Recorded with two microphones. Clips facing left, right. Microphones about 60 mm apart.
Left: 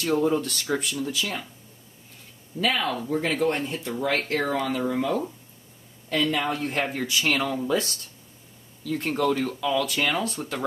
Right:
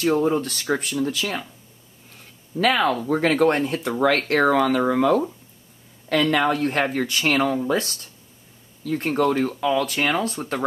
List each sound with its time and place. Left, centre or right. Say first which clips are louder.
0.1 s speech: even; right
0.4 s speech: right 3 dB; right
2.6 s speech: right 6 dB; right